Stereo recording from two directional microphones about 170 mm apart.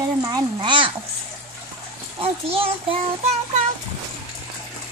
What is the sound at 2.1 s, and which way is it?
Speech, 35° right (ahead or behind).